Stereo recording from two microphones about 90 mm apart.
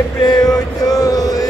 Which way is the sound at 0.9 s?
45° left (ahead or behind).